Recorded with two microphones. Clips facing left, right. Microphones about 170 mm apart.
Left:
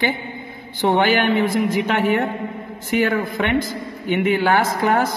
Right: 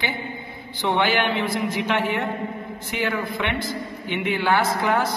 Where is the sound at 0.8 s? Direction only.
45° left (ahead or behind).